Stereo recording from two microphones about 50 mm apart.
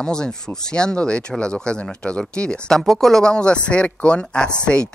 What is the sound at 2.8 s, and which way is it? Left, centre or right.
Speech, centre.